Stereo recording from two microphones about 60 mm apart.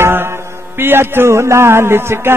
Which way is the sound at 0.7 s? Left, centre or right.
Right.